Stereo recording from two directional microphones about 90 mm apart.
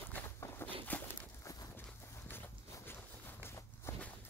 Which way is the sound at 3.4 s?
30° left (ahead or behind).